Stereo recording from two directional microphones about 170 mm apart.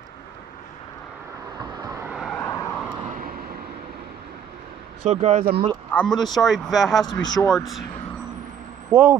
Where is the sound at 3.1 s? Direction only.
55° right (ahead or behind).